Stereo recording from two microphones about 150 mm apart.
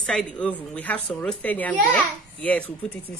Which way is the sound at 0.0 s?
5° left (ahead or behind).